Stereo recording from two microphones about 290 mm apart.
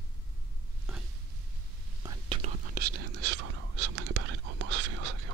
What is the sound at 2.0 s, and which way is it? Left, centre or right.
Whispering, centre.